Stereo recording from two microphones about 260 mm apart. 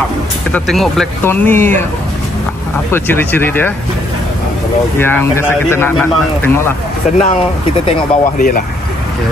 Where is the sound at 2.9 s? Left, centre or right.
Centre.